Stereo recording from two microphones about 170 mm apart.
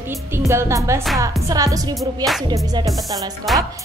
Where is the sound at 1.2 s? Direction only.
20° right (ahead or behind).